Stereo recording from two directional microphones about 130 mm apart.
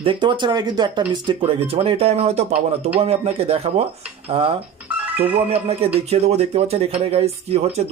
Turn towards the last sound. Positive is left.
turn(degrees=-50)  # may be behind; listen again after turning